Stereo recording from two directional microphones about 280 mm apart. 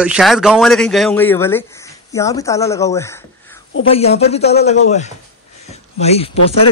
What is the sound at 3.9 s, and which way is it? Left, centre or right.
Speech, left.